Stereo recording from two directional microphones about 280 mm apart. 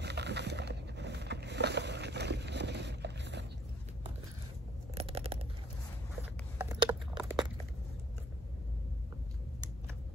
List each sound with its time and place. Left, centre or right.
0.0 s vehicle: right
4.9 s scissors: right
6.6 s a sound: centre